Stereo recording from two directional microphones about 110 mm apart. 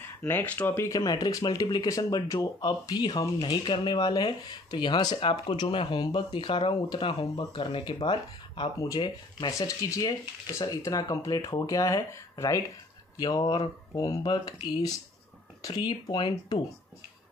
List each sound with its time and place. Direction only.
0.2 s speech: 15° left (ahead or behind)
1.0 s speech: 40° left (ahead or behind)
8.7 s speech: 35° left (ahead or behind)